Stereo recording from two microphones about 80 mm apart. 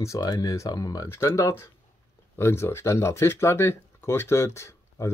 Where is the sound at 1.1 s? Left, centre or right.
Left.